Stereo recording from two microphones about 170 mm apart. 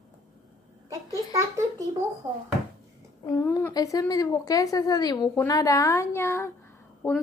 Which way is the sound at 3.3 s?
15° left (ahead or behind).